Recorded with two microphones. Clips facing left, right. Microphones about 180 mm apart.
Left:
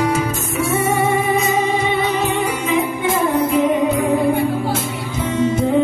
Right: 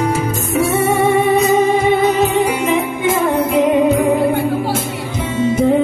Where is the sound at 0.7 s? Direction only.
65° right (ahead or behind).